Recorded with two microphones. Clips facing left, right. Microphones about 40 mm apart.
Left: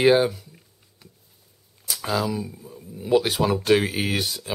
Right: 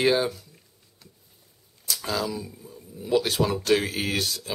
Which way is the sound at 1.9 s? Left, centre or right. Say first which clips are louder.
Left 3 dB; centre.